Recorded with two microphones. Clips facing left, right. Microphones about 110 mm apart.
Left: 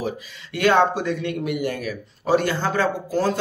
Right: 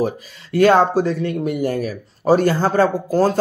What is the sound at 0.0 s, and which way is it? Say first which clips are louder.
Speech: right 7 dB; 40° right (ahead or behind).